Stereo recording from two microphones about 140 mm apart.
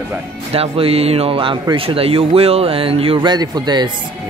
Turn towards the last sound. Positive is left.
turn(degrees=-30)  # may be behind; listen again after turning